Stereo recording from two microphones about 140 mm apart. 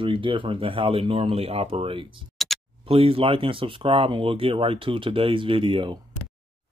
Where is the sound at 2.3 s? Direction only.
Centre (ahead or behind).